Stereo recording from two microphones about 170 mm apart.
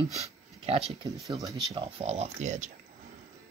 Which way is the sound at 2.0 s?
40° right (ahead or behind).